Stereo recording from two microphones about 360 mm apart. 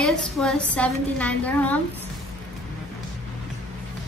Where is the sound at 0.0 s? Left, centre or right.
Centre.